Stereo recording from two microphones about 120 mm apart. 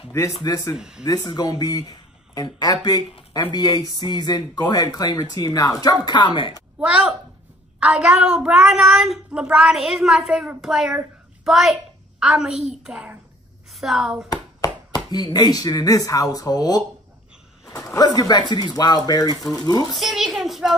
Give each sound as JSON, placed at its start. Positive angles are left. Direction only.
{"t": 0.1, "sound": "speech", "side_deg": 25}
{"t": 0.7, "sound": "a woman's voice", "side_deg": -5}
{"t": 1.0, "sound": "speech", "side_deg": 35}
{"t": 6.8, "sound": "a woman's voice", "side_deg": -10}
{"t": 14.3, "sound": "clapping", "side_deg": 35}
{"t": 15.0, "sound": "speech", "side_deg": 35}
{"t": 19.3, "sound": "a woman's voice", "side_deg": 0}
{"t": 19.6, "sound": "speech", "side_deg": 35}
{"t": 20.0, "sound": "a sound", "side_deg": 0}